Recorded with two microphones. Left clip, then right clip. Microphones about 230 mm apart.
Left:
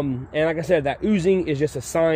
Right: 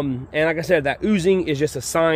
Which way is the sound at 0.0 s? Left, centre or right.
Centre.